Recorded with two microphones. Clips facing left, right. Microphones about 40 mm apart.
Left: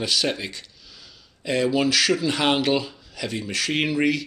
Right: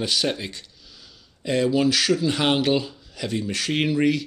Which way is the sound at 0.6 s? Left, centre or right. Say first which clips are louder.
Left 1 dB; centre.